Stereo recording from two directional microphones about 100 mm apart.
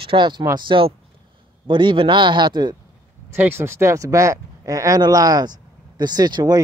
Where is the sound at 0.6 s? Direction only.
60° right (ahead or behind).